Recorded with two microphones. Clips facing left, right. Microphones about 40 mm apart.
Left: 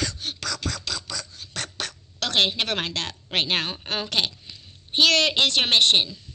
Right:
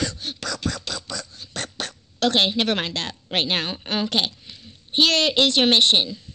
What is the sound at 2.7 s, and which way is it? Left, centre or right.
Speech, right.